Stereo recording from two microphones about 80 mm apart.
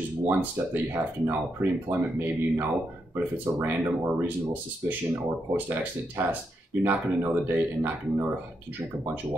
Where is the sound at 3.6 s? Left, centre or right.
Right.